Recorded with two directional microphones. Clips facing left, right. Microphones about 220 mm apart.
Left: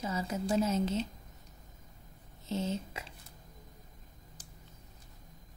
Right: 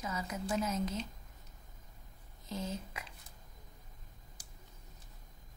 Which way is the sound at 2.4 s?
25° left (ahead or behind).